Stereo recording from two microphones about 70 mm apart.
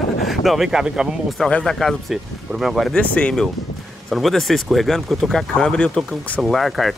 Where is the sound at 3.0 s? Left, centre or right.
Centre.